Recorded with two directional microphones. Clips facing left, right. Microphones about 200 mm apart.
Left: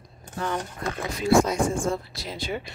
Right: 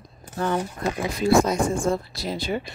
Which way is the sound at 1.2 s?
40° right (ahead or behind).